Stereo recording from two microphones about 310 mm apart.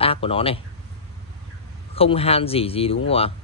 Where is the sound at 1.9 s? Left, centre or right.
Centre.